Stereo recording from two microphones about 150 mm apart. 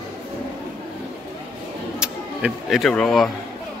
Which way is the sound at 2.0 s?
5° right (ahead or behind).